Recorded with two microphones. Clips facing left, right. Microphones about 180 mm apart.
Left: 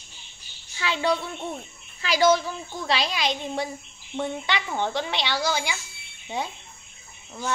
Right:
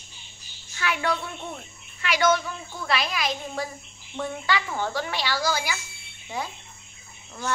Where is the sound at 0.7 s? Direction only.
25° left (ahead or behind).